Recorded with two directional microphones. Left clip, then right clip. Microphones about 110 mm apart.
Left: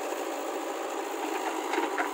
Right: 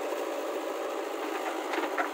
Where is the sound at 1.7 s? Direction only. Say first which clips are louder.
Left 1 dB; 15° left (ahead or behind).